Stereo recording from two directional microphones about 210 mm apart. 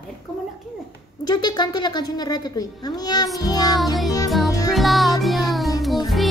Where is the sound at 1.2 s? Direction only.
20° left (ahead or behind).